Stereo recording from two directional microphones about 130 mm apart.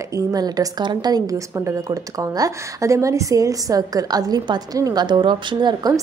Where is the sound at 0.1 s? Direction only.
30° right (ahead or behind).